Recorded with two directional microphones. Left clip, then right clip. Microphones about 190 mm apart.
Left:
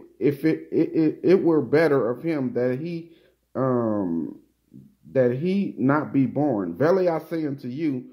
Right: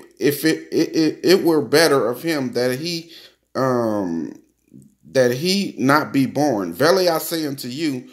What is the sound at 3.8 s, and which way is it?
Speech, 30° right (ahead or behind).